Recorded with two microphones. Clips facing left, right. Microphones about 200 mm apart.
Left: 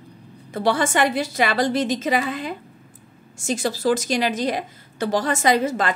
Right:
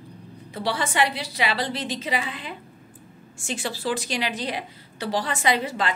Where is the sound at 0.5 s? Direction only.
50° left (ahead or behind).